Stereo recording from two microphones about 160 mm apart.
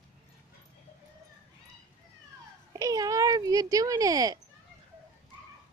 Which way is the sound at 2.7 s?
20° right (ahead or behind).